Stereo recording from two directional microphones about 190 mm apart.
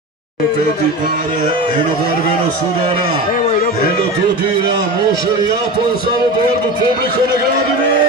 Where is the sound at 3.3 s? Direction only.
50° left (ahead or behind).